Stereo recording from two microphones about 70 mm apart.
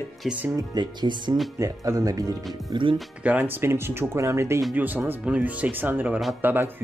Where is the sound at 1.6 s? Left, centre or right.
Right.